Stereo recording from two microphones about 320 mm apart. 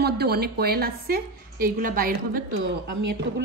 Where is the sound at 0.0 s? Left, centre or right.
Right.